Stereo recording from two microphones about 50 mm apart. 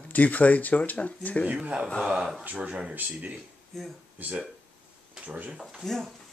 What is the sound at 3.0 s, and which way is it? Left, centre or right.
Speech, right.